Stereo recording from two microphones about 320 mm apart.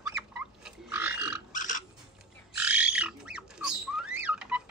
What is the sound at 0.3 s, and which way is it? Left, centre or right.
Burping, centre.